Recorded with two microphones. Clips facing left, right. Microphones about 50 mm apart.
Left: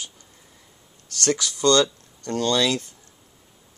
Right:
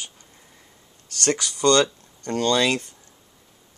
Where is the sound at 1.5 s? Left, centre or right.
Centre.